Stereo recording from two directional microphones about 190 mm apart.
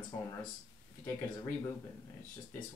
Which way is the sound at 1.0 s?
15° left (ahead or behind).